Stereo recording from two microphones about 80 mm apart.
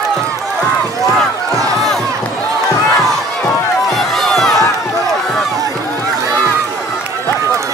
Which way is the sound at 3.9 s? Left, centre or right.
Centre.